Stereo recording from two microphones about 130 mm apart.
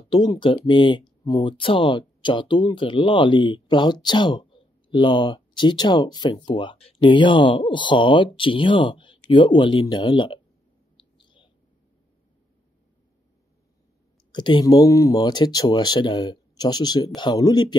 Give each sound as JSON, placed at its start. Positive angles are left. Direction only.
{"t": 0.1, "sound": "speech", "side_deg": 35}
{"t": 11.1, "sound": "a sound", "side_deg": 40}
{"t": 14.3, "sound": "speech", "side_deg": 35}